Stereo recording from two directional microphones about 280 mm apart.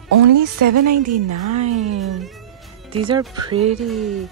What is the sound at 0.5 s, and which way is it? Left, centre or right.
Speech, right.